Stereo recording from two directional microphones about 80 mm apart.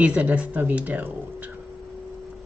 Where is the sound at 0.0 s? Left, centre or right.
Centre.